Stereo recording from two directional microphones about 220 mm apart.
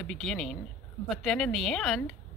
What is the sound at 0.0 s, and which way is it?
A woman's voice, centre (ahead or behind).